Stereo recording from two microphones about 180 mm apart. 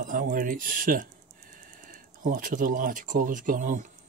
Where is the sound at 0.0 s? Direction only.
50° right (ahead or behind).